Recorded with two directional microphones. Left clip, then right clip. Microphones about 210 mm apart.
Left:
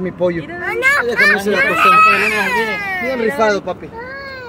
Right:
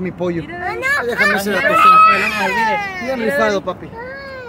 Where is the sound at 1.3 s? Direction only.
20° right (ahead or behind).